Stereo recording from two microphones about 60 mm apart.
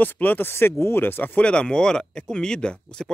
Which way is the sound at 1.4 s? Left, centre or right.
Centre.